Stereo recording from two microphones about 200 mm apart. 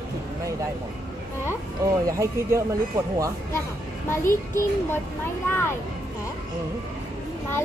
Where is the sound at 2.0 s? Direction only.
15° right (ahead or behind).